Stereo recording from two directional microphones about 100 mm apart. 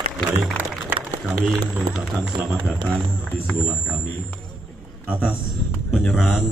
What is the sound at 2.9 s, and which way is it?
Speech, 15° left (ahead or behind).